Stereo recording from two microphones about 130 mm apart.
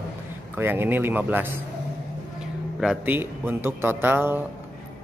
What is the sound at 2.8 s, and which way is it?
Speech, 5° right (ahead or behind).